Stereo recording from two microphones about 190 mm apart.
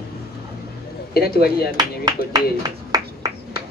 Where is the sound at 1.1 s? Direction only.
55° left (ahead or behind).